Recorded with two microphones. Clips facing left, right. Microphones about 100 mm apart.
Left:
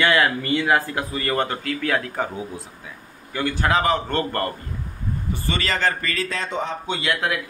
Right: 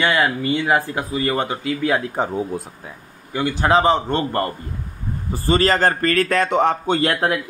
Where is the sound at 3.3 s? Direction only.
20° right (ahead or behind).